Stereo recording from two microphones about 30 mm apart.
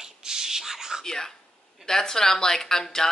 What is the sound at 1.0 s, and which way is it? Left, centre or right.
Speech, centre.